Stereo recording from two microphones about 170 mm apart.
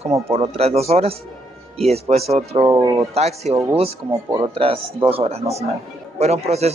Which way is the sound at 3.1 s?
40° right (ahead or behind).